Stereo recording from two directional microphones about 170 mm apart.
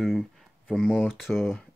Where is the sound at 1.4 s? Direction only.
10° left (ahead or behind).